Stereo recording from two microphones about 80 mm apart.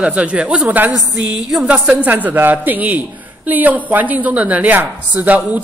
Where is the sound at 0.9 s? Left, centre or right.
Centre.